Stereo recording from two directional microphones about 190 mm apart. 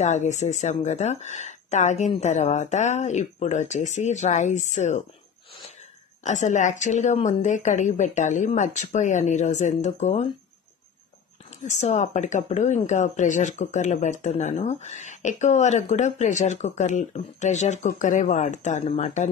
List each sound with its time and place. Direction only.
0.0 s speech: 35° left (ahead or behind)
6.2 s speech: 40° left (ahead or behind)
11.7 s speech: 35° left (ahead or behind)